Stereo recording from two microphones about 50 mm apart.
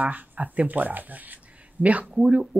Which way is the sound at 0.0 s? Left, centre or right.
Right.